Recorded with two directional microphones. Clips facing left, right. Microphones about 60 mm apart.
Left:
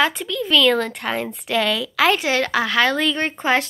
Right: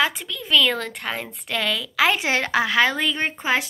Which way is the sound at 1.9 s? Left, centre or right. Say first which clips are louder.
Left 2 dB; centre.